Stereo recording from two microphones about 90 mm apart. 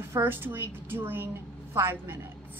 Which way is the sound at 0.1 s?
25° right (ahead or behind).